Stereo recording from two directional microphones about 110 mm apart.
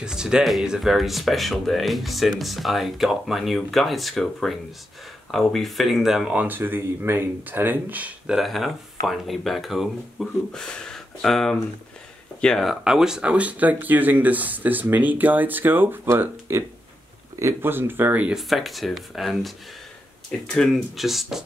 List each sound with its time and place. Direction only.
0.0 s speech: 5° right (ahead or behind)
8.4 s speech: centre (ahead or behind)
18.5 s speech: centre (ahead or behind)